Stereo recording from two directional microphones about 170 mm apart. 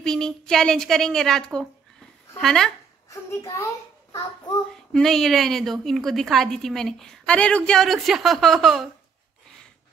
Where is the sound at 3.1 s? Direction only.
15° left (ahead or behind).